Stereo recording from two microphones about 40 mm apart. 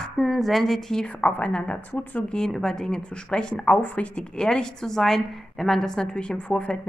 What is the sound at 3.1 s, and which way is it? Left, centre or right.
Speech, left.